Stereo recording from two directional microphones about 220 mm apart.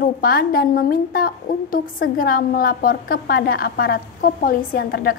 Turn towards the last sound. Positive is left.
turn(degrees=45)  # may be behind; listen again after turning